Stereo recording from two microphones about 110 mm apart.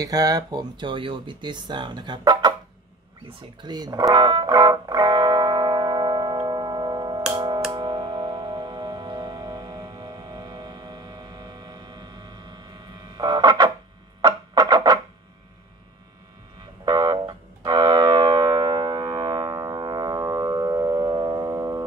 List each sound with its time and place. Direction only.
0.0 s speech: 35° right (ahead or behind)
3.3 s music: 45° right (ahead or behind)
14.2 s a sound: 35° right (ahead or behind)
16.8 s music: 40° right (ahead or behind)